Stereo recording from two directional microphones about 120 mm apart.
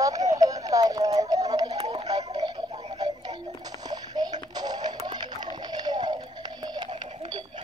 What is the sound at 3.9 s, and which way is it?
Music, 35° right (ahead or behind).